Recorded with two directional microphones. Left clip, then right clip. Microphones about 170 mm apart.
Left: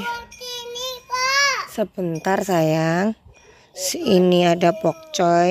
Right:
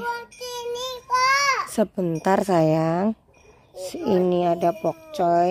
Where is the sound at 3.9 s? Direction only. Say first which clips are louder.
Left 4 dB; 10° left (ahead or behind).